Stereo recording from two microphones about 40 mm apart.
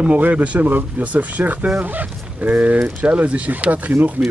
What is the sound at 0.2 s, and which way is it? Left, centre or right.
Speech, right.